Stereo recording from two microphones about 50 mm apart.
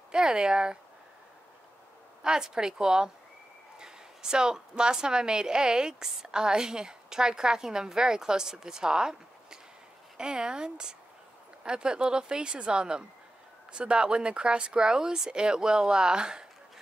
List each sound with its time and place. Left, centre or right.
0.1 s a woman's voice: centre
2.2 s a woman's voice: centre